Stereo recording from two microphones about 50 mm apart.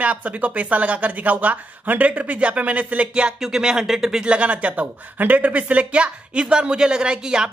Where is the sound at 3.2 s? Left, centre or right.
Centre.